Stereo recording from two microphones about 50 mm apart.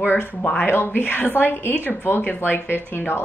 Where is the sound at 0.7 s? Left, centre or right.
Left.